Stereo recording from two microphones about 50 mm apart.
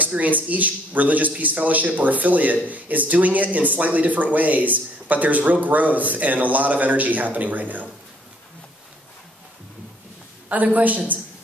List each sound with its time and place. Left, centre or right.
0.0 s speech: right
10.5 s speech: right